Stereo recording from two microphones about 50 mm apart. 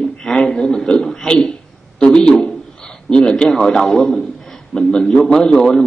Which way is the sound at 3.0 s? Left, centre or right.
Centre.